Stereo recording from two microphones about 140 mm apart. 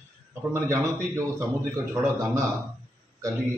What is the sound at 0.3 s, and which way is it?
Speech, 20° right (ahead or behind).